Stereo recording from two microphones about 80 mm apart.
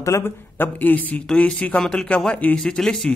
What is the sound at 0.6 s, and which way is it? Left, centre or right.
Speech, left.